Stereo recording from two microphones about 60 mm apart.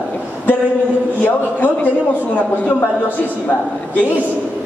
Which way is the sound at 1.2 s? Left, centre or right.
Left.